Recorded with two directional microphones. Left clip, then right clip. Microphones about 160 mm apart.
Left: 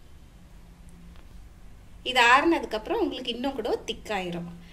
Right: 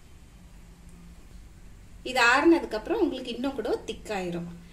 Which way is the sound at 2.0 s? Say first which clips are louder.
Left 2 dB; 40° right (ahead or behind).